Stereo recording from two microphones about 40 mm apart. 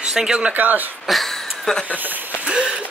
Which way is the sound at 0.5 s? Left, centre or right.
Right.